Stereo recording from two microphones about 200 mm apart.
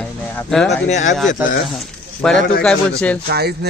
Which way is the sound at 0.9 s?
35° left (ahead or behind).